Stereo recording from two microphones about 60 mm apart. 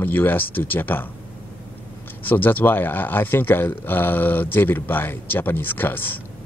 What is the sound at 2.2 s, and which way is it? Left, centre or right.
Speech, left.